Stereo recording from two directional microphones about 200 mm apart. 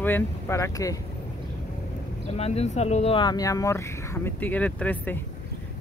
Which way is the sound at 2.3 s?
30° left (ahead or behind).